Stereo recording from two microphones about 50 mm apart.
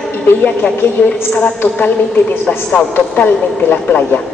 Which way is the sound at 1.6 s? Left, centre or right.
Left.